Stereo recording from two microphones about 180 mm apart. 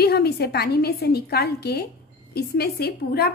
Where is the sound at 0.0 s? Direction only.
60° left (ahead or behind).